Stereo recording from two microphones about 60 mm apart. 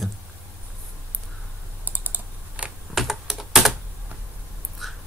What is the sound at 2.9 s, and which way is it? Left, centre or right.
Computer keyboard, centre.